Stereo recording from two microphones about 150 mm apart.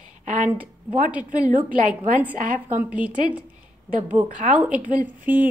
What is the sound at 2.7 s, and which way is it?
Speech, 10° right (ahead or behind).